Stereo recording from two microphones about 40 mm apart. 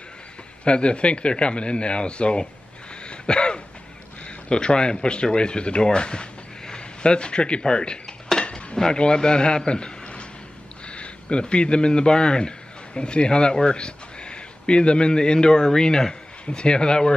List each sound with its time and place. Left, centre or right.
0.7 s speech: left
3.1 s throat clearing: left
4.5 s speech: left
6.7 s dishes: left
8.7 s speech: left
9.7 s a sound: left
10.9 s a man's voice: left